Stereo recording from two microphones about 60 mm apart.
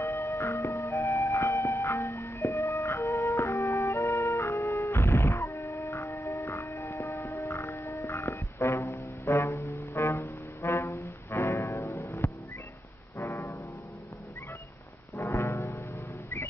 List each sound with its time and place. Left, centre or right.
0.0 s music: left
7.1 s music: left
13.3 s music: left
15.1 s music: left